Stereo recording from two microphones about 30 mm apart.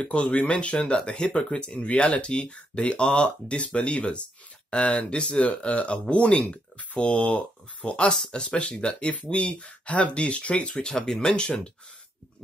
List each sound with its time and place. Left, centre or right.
0.0 s speech: left
5.5 s speech: left
6.4 s speech: left
7.0 s speech: left
9.1 s speech: left
10.7 s speech: left